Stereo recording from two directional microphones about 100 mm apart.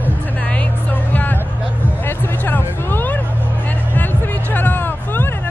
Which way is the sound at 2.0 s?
20° left (ahead or behind).